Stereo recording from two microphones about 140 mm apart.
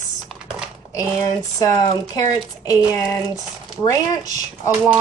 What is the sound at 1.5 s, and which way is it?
Speech, 25° left (ahead or behind).